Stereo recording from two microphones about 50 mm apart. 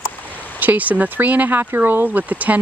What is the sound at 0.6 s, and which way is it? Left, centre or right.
Speech, right.